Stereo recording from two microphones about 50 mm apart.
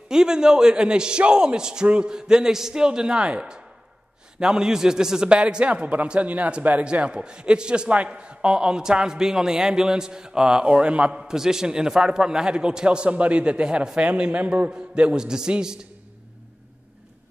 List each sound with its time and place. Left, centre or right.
0.1 s a man's voice: centre
11.1 s a man's voice: centre